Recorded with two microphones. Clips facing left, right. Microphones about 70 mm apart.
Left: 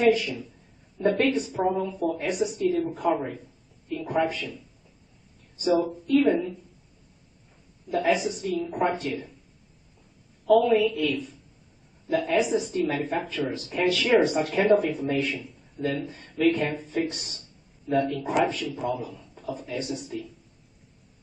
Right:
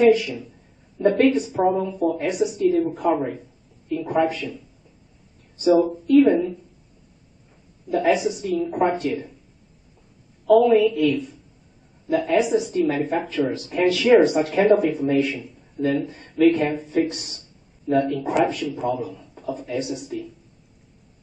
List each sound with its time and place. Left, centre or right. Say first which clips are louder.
0.0 s a man's voice: right 5 dB; centre
3.1 s speech: right 1 dB; centre
4.3 s a man's voice: right 4 dB; centre
7.9 s a man's voice: right 4 dB; centre
10.6 s a man's voice: right 6 dB; centre